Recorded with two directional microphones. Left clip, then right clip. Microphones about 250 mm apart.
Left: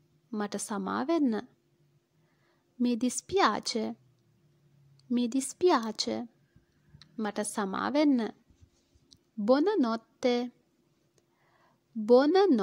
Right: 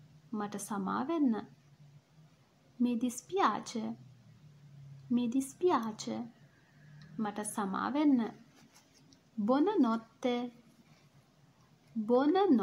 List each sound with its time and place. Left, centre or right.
0.3 s a woman's voice: left
2.8 s a woman's voice: left
5.1 s a woman's voice: left
12.1 s a woman's voice: left